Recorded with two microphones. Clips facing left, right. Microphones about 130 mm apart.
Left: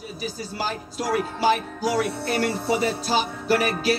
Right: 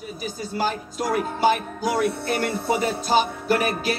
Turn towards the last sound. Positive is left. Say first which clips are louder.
# left 1 dB
turn(degrees=-45)  # may be behind; listen again after turning